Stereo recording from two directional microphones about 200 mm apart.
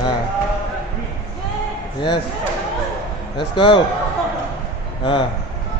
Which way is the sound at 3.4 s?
25° left (ahead or behind).